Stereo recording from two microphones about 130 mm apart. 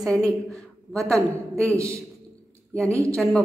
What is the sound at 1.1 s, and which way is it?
Speech, 25° right (ahead or behind).